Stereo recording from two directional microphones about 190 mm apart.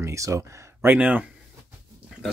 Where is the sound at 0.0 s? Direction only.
15° right (ahead or behind).